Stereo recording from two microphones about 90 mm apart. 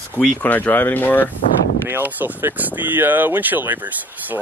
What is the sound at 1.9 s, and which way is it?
Speech, 20° right (ahead or behind).